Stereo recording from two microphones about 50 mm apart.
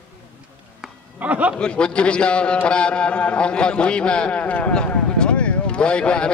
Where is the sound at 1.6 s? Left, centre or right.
Centre.